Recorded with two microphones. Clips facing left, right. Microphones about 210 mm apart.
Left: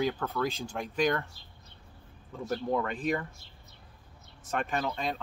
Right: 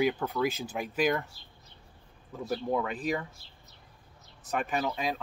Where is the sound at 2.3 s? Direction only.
5° right (ahead or behind).